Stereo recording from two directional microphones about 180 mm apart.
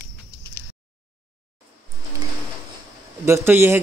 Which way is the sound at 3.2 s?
15° right (ahead or behind).